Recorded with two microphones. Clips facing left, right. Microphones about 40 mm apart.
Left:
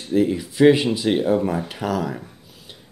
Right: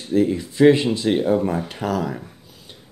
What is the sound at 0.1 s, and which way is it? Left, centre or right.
Speech, centre.